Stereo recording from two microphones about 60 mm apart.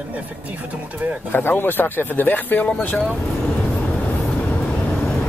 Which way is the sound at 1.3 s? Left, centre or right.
Left.